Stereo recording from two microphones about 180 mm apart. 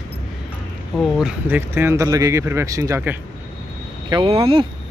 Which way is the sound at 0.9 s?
Centre (ahead or behind).